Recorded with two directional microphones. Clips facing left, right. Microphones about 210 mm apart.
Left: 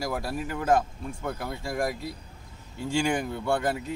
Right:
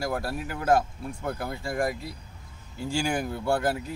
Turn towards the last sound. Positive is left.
turn(degrees=-5)  # may be behind; listen again after turning